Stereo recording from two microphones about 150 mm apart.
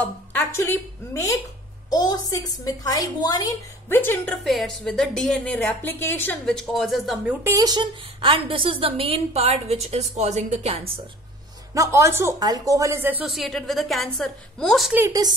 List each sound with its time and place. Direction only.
0.0 s a woman's voice: 10° left (ahead or behind)
3.9 s a woman's voice: 15° left (ahead or behind)
4.5 s a woman's voice: centre (ahead or behind)
6.5 s a woman's voice: centre (ahead or behind)
7.5 s a woman's voice: 25° right (ahead or behind); by 10.9 s 45° right (ahead or behind)
11.7 s speech: 20° right (ahead or behind)
13.2 s a woman's voice: centre (ahead or behind)
15.0 s speech: 25° right (ahead or behind)